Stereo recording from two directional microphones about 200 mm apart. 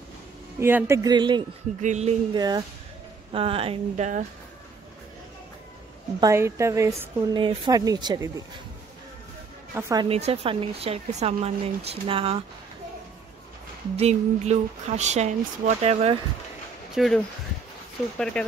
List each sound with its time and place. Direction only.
0.6 s a woman's voice: 10° right (ahead or behind)
1.8 s speech: 35° right (ahead or behind)
2.3 s speech: 20° right (ahead or behind); by 4.2 s 35° right (ahead or behind)
6.2 s a woman's voice: 15° right (ahead or behind)
9.8 s a woman's voice: 15° right (ahead or behind)
10.0 s speech: 30° right (ahead or behind)
13.9 s speech: 35° right (ahead or behind)
16.9 s speech: centre (ahead or behind)